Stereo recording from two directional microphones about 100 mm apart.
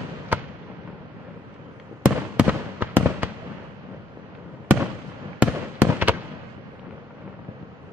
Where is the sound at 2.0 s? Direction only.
15° right (ahead or behind).